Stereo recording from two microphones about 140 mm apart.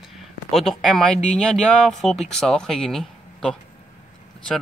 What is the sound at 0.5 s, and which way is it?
Speech, centre (ahead or behind).